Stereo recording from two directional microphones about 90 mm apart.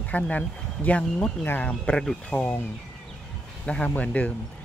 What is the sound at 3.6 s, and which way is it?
Speech, 10° left (ahead or behind).